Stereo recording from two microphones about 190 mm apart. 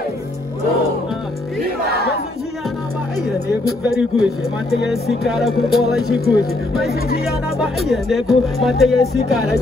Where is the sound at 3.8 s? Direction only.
5° right (ahead or behind).